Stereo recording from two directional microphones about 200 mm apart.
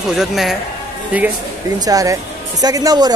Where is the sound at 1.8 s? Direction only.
15° right (ahead or behind).